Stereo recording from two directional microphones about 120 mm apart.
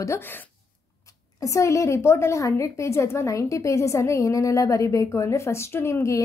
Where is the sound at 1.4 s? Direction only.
25° left (ahead or behind).